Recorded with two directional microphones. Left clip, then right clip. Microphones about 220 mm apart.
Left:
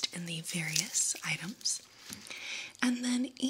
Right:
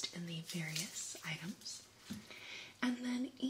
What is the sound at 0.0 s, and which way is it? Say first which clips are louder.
Whispering: left 8 dB; 50° left (ahead or behind).